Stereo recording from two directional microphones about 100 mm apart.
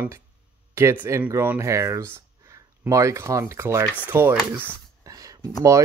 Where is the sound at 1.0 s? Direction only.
25° right (ahead or behind).